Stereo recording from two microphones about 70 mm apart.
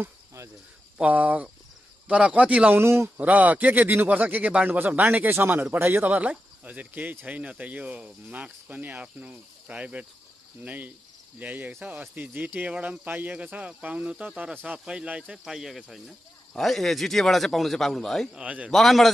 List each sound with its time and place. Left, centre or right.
0.9 s speech: centre
2.8 s speech: right
3.2 s speech: right; by 18.3 s centre
18.3 s speech: centre
18.7 s speech: centre